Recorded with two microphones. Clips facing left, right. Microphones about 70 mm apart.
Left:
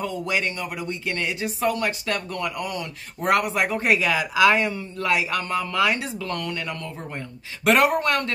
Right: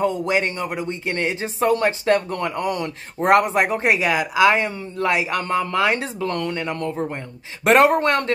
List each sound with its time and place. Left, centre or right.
0.0 s speech: right